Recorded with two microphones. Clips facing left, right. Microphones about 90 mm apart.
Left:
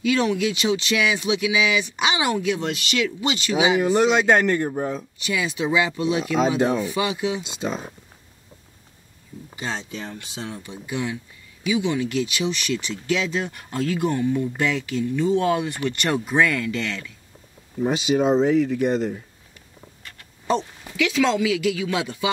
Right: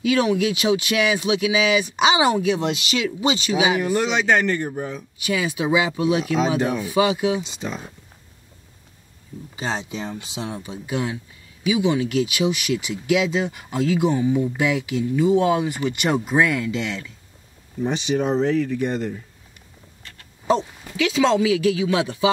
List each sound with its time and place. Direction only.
0.1 s speech: 20° right (ahead or behind)
3.8 s speech: 20° left (ahead or behind)
5.2 s speech: 15° right (ahead or behind)
7.6 s speech: 20° left (ahead or behind)
9.6 s speech: 20° right (ahead or behind)
17.7 s speech: 10° left (ahead or behind)
20.9 s speech: 25° right (ahead or behind)